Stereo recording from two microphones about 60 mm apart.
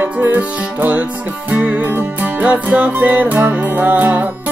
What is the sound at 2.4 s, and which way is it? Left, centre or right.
Music, right.